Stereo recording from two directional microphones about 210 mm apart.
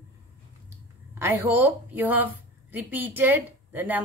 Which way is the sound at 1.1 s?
10° right (ahead or behind).